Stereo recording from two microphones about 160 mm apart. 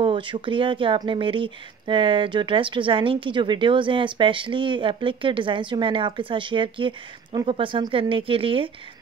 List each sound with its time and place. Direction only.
0.0 s speech: 30° right (ahead or behind)